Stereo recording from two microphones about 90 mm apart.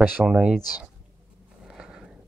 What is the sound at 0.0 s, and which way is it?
Speech, 15° right (ahead or behind).